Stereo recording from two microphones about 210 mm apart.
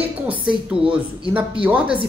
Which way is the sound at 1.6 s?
5° right (ahead or behind).